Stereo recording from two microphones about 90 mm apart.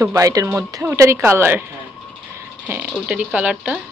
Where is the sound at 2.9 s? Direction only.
5° right (ahead or behind).